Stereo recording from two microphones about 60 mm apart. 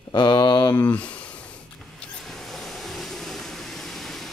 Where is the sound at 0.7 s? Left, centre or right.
Left.